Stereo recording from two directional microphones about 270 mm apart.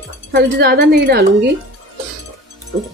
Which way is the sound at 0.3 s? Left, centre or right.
Right.